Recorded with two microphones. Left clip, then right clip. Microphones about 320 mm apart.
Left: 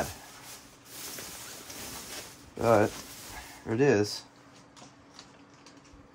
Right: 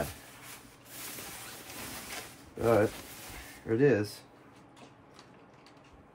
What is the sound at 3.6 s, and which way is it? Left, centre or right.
Speech, centre.